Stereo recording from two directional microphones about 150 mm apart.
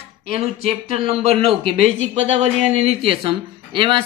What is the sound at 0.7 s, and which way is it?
Speech, 40° right (ahead or behind).